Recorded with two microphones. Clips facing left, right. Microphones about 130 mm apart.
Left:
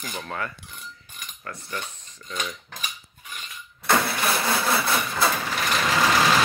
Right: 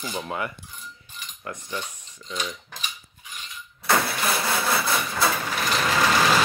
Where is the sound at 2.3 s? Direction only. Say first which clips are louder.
Even; centre (ahead or behind).